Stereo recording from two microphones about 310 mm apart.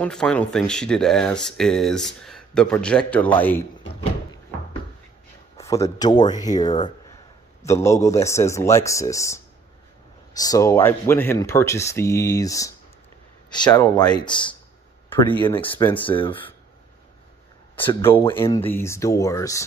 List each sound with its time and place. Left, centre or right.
0.0 s a man's voice: centre
5.6 s speech: centre
17.7 s speech: centre